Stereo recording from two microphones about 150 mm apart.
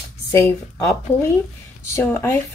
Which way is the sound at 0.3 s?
15° left (ahead or behind).